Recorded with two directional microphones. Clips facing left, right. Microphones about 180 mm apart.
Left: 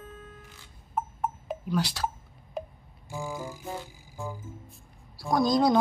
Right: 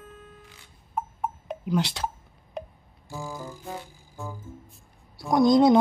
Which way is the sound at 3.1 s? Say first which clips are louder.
Left 1 dB; 10° left (ahead or behind).